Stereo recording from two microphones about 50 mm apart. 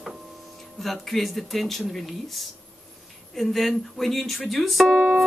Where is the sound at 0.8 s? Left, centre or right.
Centre.